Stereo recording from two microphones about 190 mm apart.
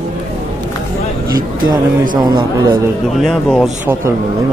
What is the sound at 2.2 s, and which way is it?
Speech, 20° right (ahead or behind).